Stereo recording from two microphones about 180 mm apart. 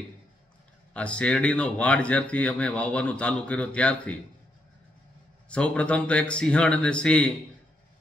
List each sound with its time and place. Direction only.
0.9 s speech: 5° left (ahead or behind)
5.5 s speech: 5° left (ahead or behind)